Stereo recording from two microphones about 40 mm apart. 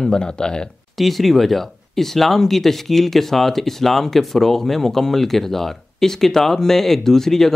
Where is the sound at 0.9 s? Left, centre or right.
Centre.